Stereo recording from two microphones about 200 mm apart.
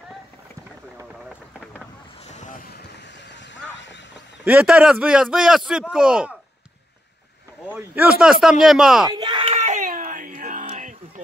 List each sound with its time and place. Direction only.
2.2 s vehicle: 35° left (ahead or behind)
4.5 s a man's voice: 5° right (ahead or behind)
7.6 s a man's voice: 10° right (ahead or behind)
9.1 s a sound: 25° right (ahead or behind); by 11.0 s 40° right (ahead or behind)